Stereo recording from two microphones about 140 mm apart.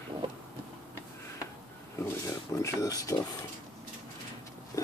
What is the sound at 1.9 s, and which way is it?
Speech, 20° left (ahead or behind).